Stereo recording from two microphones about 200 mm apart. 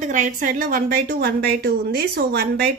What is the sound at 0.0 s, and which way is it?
A woman's voice, 40° right (ahead or behind).